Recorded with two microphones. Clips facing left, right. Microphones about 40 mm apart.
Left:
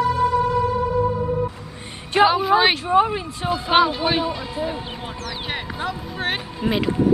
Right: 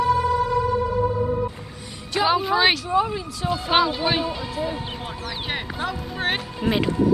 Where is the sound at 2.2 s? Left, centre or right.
Centre.